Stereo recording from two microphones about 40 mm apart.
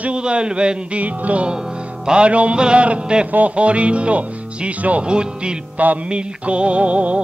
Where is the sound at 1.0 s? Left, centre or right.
Right.